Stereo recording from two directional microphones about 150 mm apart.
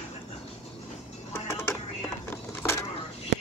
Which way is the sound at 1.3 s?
15° left (ahead or behind).